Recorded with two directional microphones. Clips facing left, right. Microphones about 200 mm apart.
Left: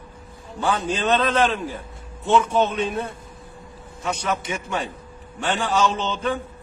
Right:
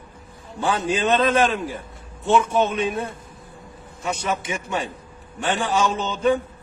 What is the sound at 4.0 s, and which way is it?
A man's voice, 5° right (ahead or behind).